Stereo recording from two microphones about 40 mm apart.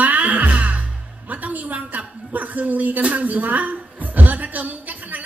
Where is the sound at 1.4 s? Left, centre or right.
Right.